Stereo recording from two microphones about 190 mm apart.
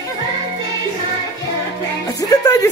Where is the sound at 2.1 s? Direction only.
20° left (ahead or behind).